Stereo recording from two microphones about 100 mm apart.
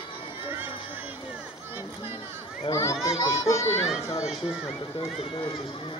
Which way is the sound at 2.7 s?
30° left (ahead or behind).